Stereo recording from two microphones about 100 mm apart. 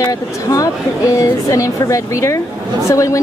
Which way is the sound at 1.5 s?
30° left (ahead or behind).